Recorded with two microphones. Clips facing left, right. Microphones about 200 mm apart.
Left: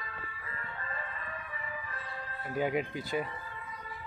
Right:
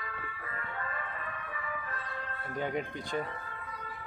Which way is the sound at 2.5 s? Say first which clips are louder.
Left 3 dB; 10° left (ahead or behind).